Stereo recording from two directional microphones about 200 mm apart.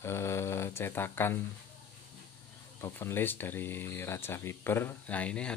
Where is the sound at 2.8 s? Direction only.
10° left (ahead or behind).